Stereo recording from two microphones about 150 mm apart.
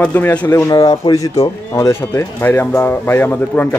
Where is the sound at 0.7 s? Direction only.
25° left (ahead or behind).